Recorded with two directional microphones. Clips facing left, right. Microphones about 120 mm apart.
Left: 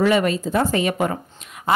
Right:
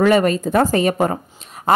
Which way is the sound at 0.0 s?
45° right (ahead or behind).